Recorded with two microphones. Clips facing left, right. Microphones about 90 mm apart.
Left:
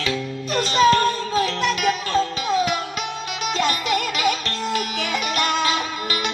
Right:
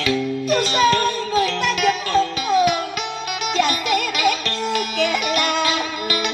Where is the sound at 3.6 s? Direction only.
35° left (ahead or behind).